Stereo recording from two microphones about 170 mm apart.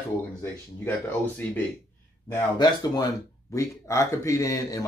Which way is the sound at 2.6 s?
20° left (ahead or behind).